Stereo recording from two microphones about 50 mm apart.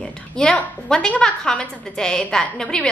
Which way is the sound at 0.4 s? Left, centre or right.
Centre.